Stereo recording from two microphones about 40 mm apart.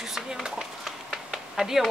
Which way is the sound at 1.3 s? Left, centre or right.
Centre.